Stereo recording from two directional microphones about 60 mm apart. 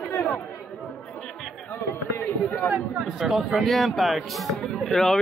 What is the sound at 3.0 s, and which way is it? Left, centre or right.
Speech, centre.